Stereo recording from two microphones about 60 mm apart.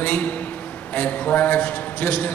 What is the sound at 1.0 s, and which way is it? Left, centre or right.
A man's voice, left.